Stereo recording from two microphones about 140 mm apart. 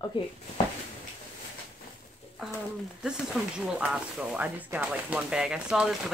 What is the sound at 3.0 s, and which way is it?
Speech, 5° right (ahead or behind).